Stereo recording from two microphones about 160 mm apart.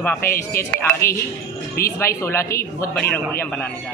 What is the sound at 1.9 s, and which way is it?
Speech, 15° left (ahead or behind).